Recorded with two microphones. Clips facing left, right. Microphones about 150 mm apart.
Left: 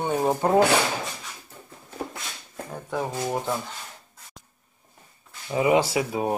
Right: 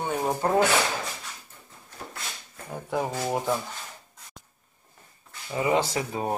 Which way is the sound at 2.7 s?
10° right (ahead or behind).